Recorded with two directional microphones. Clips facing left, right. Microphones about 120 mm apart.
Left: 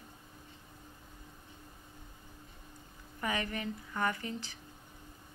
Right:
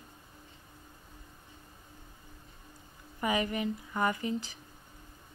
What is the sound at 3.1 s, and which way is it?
Speech, 15° right (ahead or behind).